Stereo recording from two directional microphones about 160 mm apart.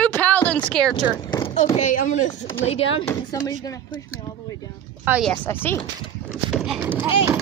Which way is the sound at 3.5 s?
25° left (ahead or behind).